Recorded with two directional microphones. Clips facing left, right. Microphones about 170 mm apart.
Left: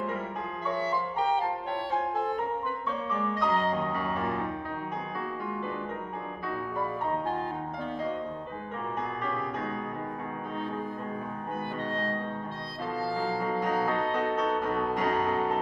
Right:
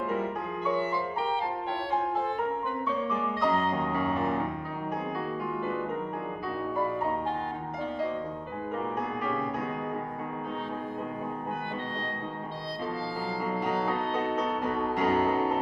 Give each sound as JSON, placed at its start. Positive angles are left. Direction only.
{"t": 0.8, "sound": "music", "side_deg": 45}
{"t": 13.5, "sound": "music", "side_deg": -5}